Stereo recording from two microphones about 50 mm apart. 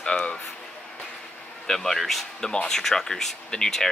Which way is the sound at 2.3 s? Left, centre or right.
Centre.